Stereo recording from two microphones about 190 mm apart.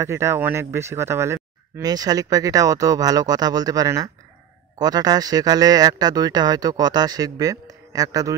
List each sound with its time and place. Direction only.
0.0 s speech: 15° right (ahead or behind)